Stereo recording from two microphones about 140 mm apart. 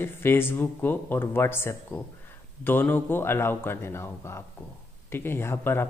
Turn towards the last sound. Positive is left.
turn(degrees=15)  # may be behind; listen again after turning